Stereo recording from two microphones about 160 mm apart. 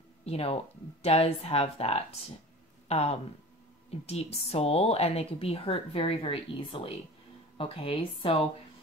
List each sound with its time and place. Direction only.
0.2 s a woman's voice: 40° left (ahead or behind)